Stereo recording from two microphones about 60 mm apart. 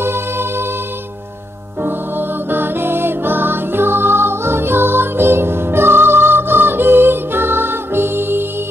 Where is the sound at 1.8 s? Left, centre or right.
Right.